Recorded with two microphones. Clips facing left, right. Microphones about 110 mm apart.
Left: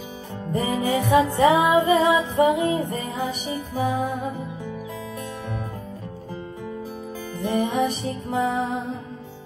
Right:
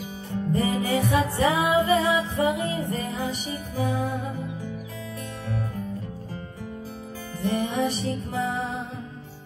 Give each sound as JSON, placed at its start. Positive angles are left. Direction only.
{"t": 0.3, "sound": "music", "side_deg": 20}
{"t": 7.4, "sound": "music", "side_deg": 20}